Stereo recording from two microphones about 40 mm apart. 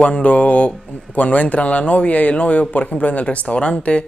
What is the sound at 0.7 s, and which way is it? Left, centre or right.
Speech, left.